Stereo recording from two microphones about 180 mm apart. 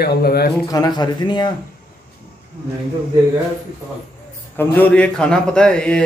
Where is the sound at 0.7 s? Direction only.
20° left (ahead or behind).